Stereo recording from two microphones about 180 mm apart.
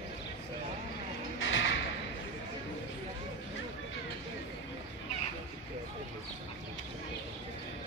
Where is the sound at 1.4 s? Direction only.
90° left.